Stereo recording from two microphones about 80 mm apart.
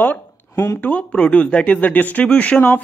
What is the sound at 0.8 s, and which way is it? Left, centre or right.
Speech, centre.